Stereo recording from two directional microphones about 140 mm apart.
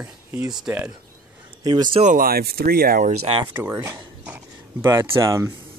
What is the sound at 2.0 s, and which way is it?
Speech, 80° right.